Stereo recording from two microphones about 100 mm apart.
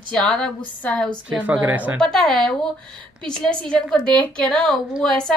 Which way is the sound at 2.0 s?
5° left (ahead or behind).